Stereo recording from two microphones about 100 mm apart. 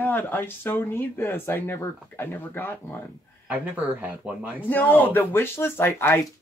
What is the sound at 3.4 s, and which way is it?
Speech, 15° right (ahead or behind).